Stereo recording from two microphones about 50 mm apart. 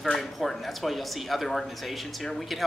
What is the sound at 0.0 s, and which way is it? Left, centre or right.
Speech, centre.